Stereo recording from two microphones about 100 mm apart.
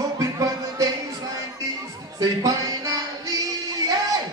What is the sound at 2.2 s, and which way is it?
Music, 35° right (ahead or behind).